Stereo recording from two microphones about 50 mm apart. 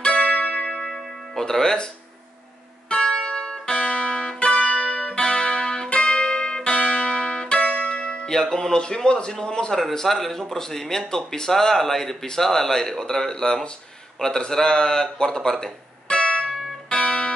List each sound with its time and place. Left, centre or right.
0.0 s music: centre
0.7 s church bell: centre
1.0 s music: centre
3.0 s music: centre
3.7 s music: left
9.8 s speech: centre
16.1 s music: centre